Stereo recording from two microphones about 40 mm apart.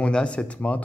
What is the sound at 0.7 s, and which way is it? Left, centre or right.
Speech, left.